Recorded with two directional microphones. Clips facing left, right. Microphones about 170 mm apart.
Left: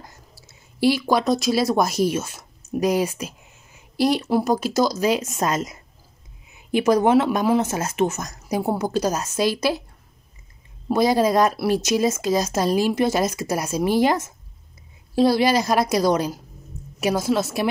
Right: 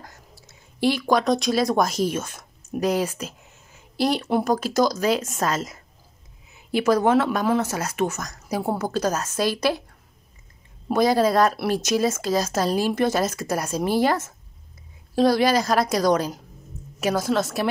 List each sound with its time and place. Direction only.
0.0 s speech: 5° left (ahead or behind)
10.9 s speech: 10° left (ahead or behind)